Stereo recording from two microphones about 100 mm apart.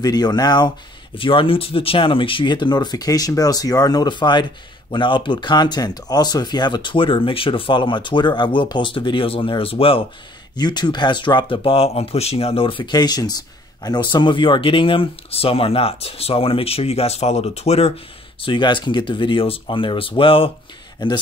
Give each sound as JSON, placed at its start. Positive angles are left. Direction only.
{"t": 0.0, "sound": "speech", "side_deg": 45}
{"t": 1.1, "sound": "speech", "side_deg": 60}
{"t": 10.5, "sound": "speech", "side_deg": 45}
{"t": 12.9, "sound": "speech", "side_deg": 40}
{"t": 18.4, "sound": "speech", "side_deg": 55}
{"t": 21.0, "sound": "speech", "side_deg": 50}